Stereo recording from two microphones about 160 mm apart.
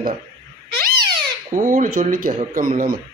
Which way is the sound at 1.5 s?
55° right (ahead or behind).